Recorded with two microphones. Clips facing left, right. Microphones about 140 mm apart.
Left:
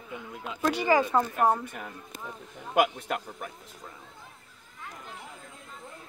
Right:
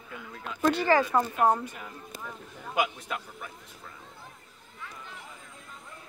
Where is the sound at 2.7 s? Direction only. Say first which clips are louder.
Left 4 dB; 55° left (ahead or behind).